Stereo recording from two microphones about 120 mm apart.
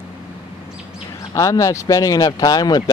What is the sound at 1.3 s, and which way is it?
Speech, 30° left (ahead or behind).